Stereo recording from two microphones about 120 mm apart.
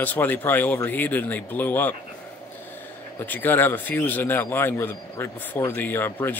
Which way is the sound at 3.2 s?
15° left (ahead or behind).